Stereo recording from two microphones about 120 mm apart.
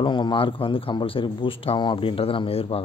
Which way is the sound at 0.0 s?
40° left (ahead or behind).